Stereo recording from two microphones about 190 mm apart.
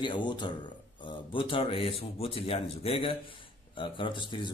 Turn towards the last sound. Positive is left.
turn(degrees=25)  # may be behind; listen again after turning